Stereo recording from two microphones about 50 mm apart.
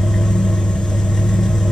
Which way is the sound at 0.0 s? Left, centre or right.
Centre.